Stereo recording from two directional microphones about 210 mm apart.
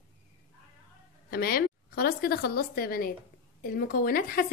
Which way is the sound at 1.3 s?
45° left (ahead or behind).